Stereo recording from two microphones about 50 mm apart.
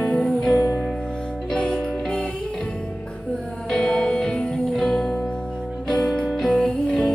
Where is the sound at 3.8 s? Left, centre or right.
Centre.